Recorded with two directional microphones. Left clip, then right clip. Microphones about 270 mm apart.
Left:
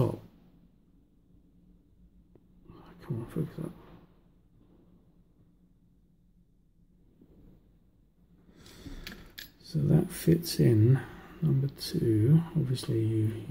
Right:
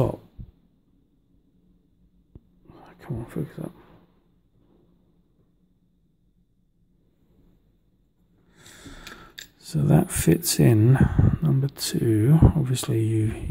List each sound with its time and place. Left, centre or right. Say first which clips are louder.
2.6 s whispering: right 5 dB; centre
8.5 s a sound: right 4 dB; right
9.6 s speech: right 7 dB; right